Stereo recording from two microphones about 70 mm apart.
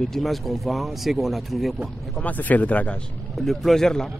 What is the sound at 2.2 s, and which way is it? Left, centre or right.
Speech, left.